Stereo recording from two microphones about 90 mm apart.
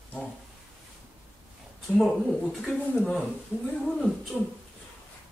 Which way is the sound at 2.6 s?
5° right (ahead or behind).